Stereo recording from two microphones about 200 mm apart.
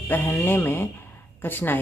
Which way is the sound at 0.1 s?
10° left (ahead or behind).